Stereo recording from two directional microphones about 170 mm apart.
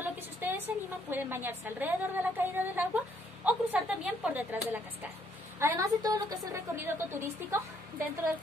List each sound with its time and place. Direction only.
0.0 s a woman's voice: 10° right (ahead or behind)